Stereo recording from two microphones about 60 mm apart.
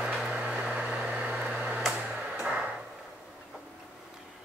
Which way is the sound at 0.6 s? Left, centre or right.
Right.